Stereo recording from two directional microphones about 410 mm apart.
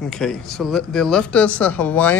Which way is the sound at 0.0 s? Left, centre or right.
Centre.